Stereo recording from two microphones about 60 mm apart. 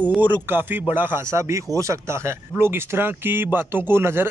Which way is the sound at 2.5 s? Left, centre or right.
Right.